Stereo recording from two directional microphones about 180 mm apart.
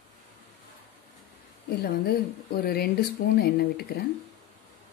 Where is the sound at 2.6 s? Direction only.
60° left (ahead or behind).